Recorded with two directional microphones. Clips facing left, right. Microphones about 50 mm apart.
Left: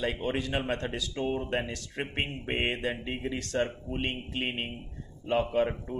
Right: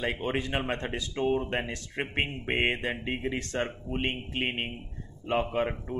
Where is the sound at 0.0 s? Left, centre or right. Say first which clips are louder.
Even; centre.